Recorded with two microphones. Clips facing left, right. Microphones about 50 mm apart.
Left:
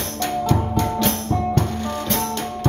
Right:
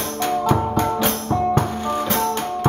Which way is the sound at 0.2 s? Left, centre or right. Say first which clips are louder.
Right 2 dB; centre.